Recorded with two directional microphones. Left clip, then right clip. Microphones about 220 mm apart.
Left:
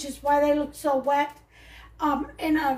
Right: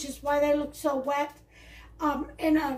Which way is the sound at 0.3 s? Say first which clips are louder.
Left 3 dB; 30° left (ahead or behind).